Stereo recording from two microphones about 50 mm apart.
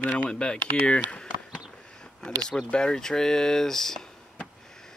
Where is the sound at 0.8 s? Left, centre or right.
Left.